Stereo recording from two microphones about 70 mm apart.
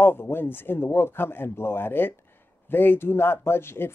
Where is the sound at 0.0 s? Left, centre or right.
Left.